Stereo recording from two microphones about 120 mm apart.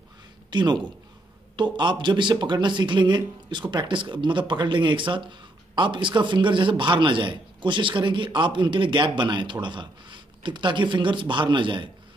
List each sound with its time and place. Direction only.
0.5 s a man's voice: 40° right (ahead or behind)